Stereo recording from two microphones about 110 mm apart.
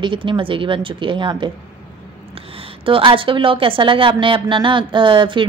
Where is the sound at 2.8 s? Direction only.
55° right (ahead or behind).